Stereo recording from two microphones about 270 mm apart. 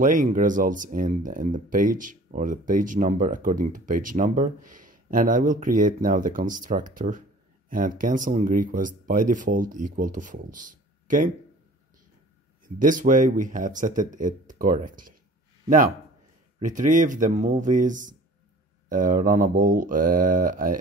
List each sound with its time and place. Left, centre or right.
0.0 s speech: right
12.6 s speech: right
16.5 s speech: right